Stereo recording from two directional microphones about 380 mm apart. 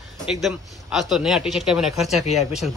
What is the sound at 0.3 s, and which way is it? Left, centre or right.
Speech, centre.